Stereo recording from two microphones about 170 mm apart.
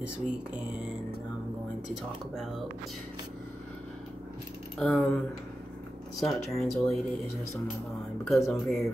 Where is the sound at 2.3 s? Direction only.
Centre (ahead or behind).